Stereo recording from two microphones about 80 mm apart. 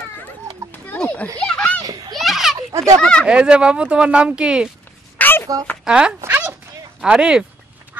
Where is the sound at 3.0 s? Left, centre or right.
Centre.